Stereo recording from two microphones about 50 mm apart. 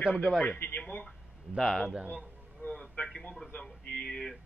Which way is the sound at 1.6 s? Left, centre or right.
Centre.